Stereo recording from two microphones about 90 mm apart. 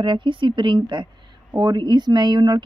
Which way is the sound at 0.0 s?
65° right (ahead or behind).